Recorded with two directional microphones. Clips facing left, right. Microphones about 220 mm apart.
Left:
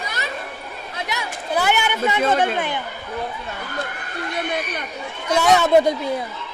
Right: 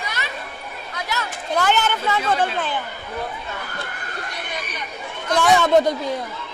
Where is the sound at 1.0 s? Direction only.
15° left (ahead or behind).